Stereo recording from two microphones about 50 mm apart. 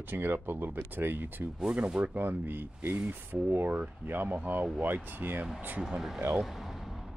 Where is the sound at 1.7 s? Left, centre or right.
Right.